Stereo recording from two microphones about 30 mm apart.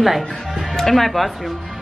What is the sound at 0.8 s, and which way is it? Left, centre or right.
Speech, centre.